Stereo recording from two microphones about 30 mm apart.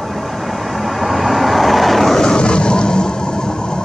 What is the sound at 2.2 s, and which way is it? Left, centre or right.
Vehicle, left.